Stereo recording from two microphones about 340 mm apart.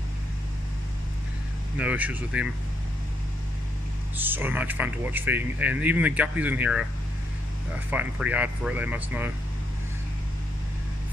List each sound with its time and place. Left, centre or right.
1.8 s speech: centre
4.2 s speech: centre
7.9 s speech: centre